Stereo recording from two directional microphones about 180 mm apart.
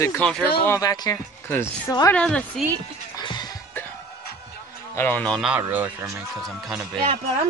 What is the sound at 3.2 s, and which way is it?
Music, 25° left (ahead or behind).